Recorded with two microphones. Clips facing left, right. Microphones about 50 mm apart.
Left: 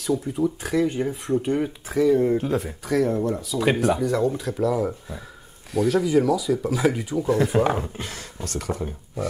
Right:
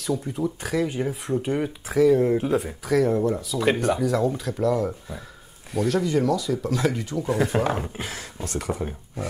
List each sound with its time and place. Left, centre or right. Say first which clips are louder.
0.0 s speech: left 3 dB; centre
7.2 s speech: left 3 dB; centre